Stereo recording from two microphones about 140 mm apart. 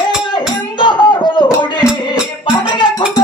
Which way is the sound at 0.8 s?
35° left (ahead or behind).